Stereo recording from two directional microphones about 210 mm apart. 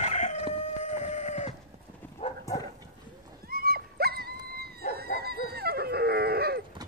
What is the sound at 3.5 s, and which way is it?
Dog, 45° right (ahead or behind).